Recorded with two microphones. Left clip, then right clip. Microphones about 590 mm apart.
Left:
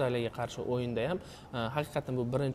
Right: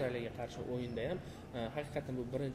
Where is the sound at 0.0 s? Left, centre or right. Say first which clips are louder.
Left 7 dB; left.